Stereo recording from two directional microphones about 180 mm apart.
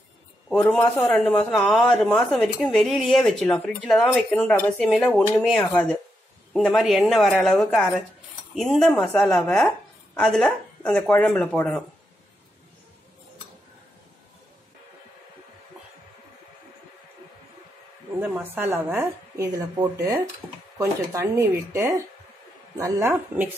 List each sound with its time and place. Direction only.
0.5 s a man's voice: 5° left (ahead or behind)
18.3 s speech: 10° right (ahead or behind)